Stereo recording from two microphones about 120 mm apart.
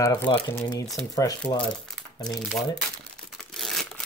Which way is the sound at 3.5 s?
Centre (ahead or behind).